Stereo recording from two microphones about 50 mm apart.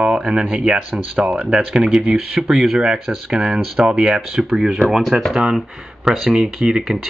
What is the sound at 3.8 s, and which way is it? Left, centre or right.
Speech, centre.